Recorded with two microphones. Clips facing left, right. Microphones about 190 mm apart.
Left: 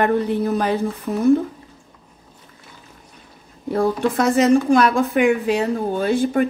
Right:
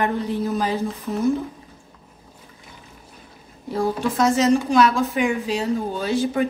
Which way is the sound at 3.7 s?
60° left (ahead or behind).